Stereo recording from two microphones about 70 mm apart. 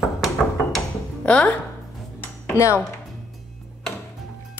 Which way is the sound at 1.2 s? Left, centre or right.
Centre.